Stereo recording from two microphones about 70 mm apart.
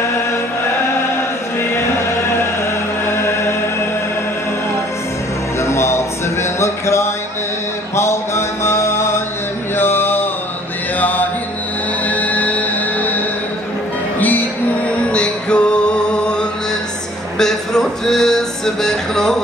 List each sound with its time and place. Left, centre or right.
3.1 s music: left
5.6 s music: left
7.9 s mantra: left
9.8 s a sound: left
11.0 s mantra: left
12.1 s music: left
15.0 s music: centre